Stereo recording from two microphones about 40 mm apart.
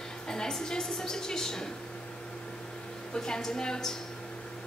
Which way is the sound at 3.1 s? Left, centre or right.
Centre.